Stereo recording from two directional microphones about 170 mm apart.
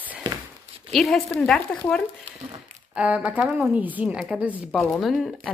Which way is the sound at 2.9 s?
10° right (ahead or behind).